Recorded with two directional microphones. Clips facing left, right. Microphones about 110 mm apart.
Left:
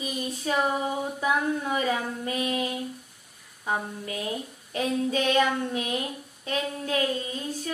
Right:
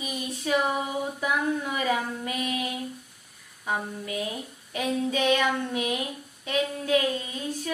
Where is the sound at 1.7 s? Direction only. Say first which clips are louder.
Even; 35° left (ahead or behind).